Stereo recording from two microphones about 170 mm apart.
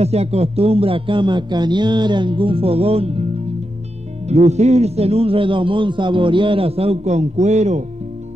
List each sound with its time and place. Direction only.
0.0 s a man's voice: 40° right (ahead or behind)
4.3 s a man's voice: 40° right (ahead or behind)